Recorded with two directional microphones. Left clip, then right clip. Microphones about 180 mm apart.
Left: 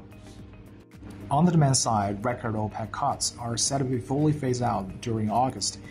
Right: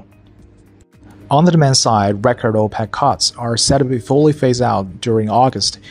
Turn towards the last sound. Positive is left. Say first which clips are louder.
# right 12 dB
turn(degrees=-35)  # may be behind; listen again after turning